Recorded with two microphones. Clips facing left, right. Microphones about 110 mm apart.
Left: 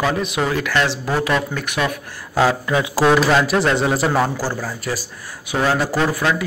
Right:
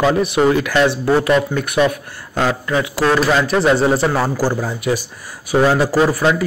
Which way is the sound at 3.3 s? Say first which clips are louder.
Right 2 dB; centre (ahead or behind).